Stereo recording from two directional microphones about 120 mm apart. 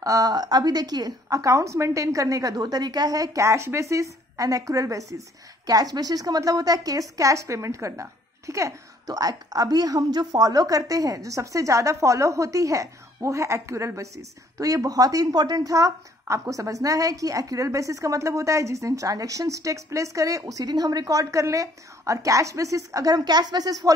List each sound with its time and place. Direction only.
0.0 s a woman's voice: 30° right (ahead or behind)